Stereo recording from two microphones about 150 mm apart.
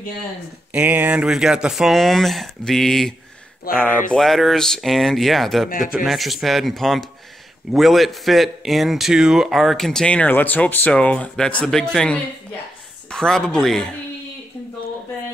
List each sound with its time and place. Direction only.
0.7 s a man's voice: 10° right (ahead or behind)
5.7 s speech: 65° left (ahead or behind)
6.0 s a man's voice: centre (ahead or behind)